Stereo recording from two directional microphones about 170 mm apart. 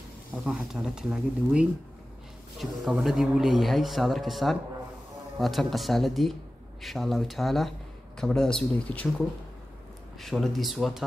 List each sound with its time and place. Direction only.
0.5 s a man's voice: 5° right (ahead or behind)
10.2 s a man's voice: centre (ahead or behind)